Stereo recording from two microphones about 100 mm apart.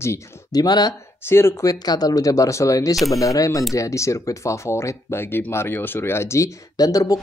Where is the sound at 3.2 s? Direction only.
35° left (ahead or behind).